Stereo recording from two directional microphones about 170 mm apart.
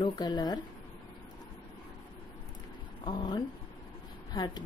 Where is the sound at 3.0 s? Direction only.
25° left (ahead or behind).